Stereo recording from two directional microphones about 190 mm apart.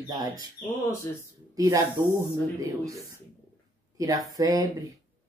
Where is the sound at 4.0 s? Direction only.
20° right (ahead or behind).